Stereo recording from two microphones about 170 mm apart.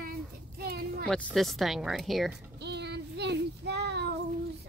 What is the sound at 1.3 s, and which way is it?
Speech, centre (ahead or behind).